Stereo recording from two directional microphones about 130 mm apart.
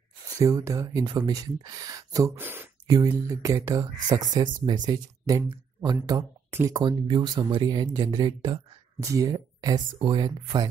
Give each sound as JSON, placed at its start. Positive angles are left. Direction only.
{"t": 0.4, "sound": "speech", "side_deg": -25}
{"t": 2.4, "sound": "speech", "side_deg": -15}
{"t": 2.9, "sound": "speech", "side_deg": -30}